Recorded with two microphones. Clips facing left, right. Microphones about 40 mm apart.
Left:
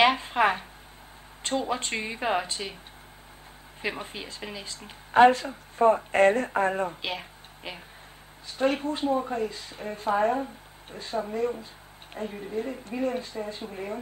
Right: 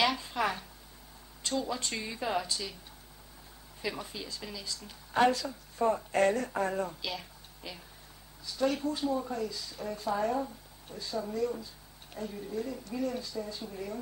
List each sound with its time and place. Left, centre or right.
0.0 s speech: left
3.8 s speech: left